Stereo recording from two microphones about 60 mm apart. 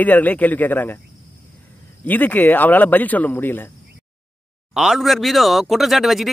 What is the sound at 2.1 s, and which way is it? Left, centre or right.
Speech, left.